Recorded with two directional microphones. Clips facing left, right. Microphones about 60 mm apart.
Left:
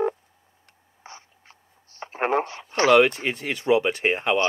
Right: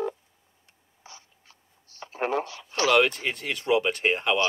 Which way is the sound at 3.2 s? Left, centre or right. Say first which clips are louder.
Left 3 dB; left.